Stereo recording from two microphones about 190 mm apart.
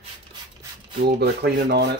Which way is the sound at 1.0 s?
60° right (ahead or behind).